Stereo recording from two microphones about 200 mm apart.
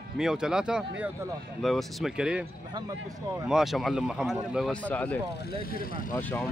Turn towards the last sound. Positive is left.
turn(degrees=10)  # may be behind; listen again after turning